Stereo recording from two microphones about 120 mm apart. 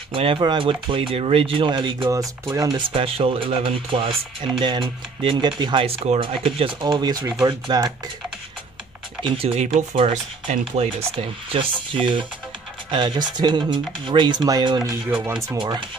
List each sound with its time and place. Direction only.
0.1 s speech: 50° right (ahead or behind)
2.5 s speech: 30° right (ahead or behind)
2.9 s speech: 50° right (ahead or behind)
5.9 s speech: 55° right (ahead or behind)
6.8 s speech: 35° right (ahead or behind)
9.2 s speech: 45° right (ahead or behind)
9.6 s speech: 70° right (ahead or behind)
9.9 s speech: 60° right (ahead or behind); by 15.8 s 40° right (ahead or behind)